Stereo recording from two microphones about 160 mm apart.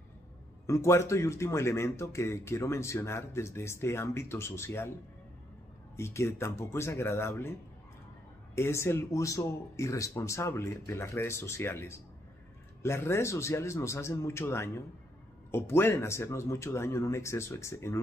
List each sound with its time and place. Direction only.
0.7 s speech: 20° left (ahead or behind)
5.9 s speech: 15° left (ahead or behind)
8.5 s speech: 15° left (ahead or behind)